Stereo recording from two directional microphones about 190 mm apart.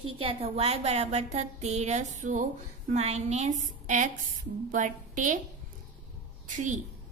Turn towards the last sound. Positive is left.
turn(degrees=-40)  # may be behind; listen again after turning